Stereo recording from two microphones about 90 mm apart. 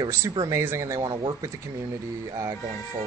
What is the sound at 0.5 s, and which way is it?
Speech, 30° right (ahead or behind).